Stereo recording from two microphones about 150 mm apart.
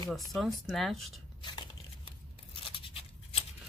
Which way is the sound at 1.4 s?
30° left (ahead or behind).